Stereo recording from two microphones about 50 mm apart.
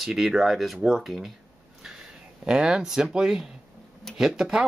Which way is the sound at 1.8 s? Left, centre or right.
Centre.